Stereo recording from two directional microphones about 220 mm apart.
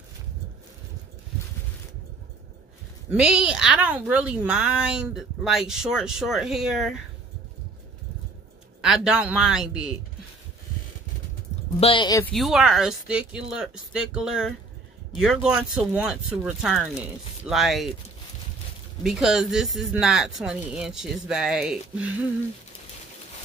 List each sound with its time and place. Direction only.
3.1 s a woman's voice: 5° right (ahead or behind)
8.8 s a woman's voice: 5° right (ahead or behind)
11.8 s speech: 20° left (ahead or behind)
12.2 s a woman's voice: centre (ahead or behind)
19.0 s a woman's voice: centre (ahead or behind)